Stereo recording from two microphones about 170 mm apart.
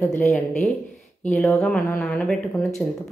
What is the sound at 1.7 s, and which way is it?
Speech, 5° left (ahead or behind).